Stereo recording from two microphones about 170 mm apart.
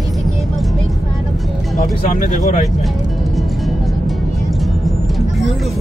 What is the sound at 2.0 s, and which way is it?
Speech, 45° left (ahead or behind).